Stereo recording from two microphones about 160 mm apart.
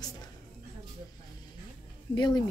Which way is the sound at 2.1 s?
25° left (ahead or behind).